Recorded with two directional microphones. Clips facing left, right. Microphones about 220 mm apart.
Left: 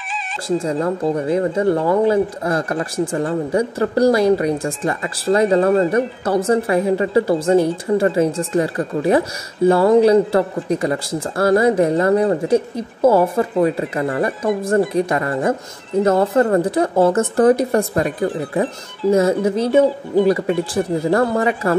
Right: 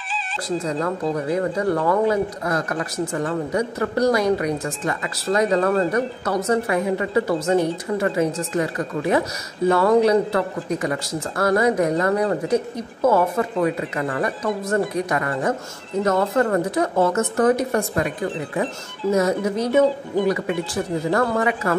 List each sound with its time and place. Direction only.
0.7 s a woman's voice: 30° left (ahead or behind)